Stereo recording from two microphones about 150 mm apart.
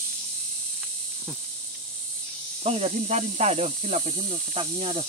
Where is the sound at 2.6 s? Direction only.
45° right (ahead or behind).